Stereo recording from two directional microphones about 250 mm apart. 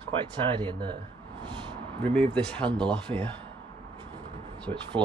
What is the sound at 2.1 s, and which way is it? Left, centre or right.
Speech, centre.